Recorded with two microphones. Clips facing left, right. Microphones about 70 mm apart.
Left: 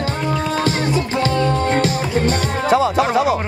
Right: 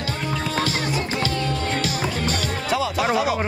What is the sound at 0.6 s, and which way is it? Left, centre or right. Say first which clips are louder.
Music: left 4 dB; left.